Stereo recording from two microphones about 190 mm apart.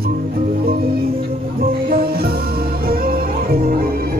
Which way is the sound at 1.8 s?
50° right (ahead or behind).